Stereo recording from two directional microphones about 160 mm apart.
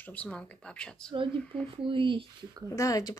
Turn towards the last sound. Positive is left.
turn(degrees=20)  # may be behind; listen again after turning